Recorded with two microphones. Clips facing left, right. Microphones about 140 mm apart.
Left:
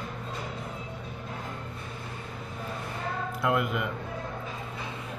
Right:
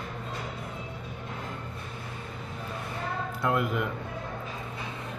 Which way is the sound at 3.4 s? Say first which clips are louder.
Even; 5° left (ahead or behind).